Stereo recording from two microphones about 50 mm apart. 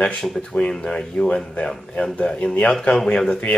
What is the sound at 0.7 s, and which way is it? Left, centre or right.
Speech, centre.